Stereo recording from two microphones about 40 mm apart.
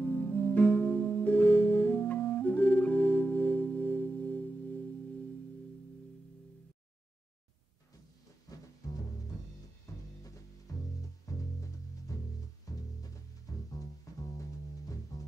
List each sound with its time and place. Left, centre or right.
0.0 s music: left